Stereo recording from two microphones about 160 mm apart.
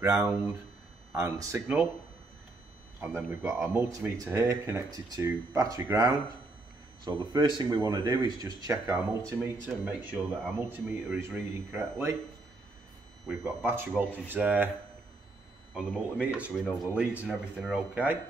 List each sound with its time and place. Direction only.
0.0 s speech: 20° right (ahead or behind)
3.0 s speech: 15° right (ahead or behind)
13.4 s speech: 15° right (ahead or behind)
15.7 s speech: 5° right (ahead or behind)